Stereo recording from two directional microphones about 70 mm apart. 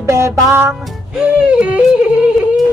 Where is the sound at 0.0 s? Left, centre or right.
Right.